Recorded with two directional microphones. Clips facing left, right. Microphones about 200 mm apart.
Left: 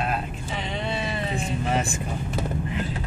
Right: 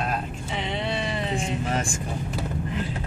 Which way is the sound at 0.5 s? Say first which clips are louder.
Right 1 dB; 25° right (ahead or behind).